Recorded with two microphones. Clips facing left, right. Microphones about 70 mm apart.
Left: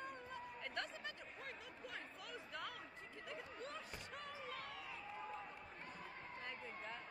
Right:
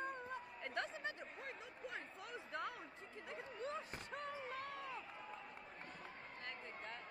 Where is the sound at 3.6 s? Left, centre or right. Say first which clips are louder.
Right 4 dB; right.